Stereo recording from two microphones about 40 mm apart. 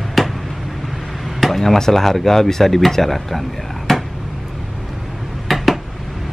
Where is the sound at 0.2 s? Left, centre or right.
Centre.